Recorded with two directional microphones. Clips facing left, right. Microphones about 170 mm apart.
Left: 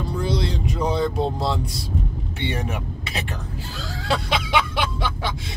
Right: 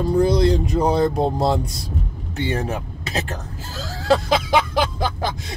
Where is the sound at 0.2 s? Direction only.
45° right (ahead or behind).